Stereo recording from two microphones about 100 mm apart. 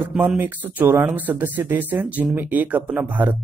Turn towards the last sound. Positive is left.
turn(degrees=-15)  # may be behind; listen again after turning